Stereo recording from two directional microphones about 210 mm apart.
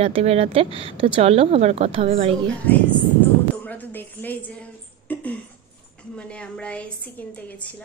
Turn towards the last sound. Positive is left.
turn(degrees=5)  # may be behind; listen again after turning